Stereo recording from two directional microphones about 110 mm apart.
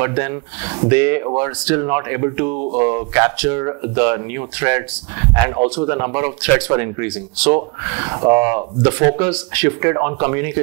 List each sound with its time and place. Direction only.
0.0 s speech: 20° right (ahead or behind)